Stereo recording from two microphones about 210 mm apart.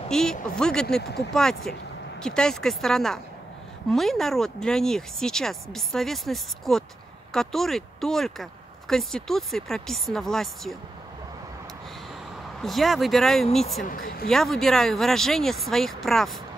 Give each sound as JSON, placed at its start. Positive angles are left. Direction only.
{"t": 0.1, "sound": "speech", "side_deg": 5}
{"t": 12.6, "sound": "speech", "side_deg": 0}
{"t": 13.8, "sound": "speech", "side_deg": 45}
{"t": 14.3, "sound": "speech", "side_deg": 0}